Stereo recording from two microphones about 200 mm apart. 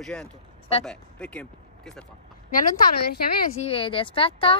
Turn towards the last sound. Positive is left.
turn(degrees=25)  # may be behind; listen again after turning